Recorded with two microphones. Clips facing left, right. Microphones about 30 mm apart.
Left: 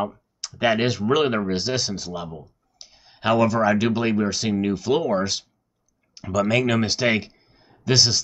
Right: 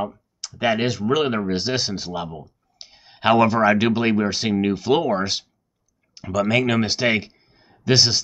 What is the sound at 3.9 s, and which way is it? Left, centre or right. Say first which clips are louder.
Speech: right 2 dB; centre.